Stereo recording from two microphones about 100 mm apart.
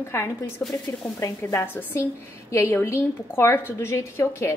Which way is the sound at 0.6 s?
15° left (ahead or behind).